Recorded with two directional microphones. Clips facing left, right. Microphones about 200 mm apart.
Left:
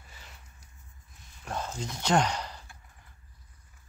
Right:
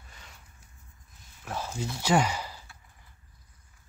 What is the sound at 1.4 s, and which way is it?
Speech, 5° right (ahead or behind).